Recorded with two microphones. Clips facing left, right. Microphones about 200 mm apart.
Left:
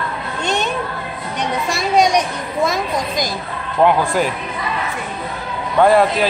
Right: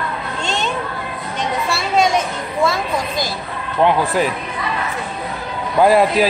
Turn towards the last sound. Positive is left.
turn(degrees=-5)  # may be behind; listen again after turning